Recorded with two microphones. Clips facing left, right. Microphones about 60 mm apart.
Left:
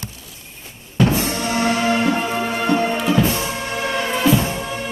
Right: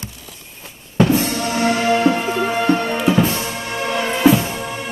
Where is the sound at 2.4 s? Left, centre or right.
Centre.